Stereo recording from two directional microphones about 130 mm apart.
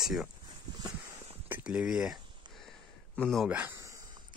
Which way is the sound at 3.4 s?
15° right (ahead or behind).